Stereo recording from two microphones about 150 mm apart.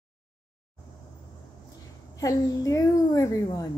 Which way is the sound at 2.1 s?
25° left (ahead or behind).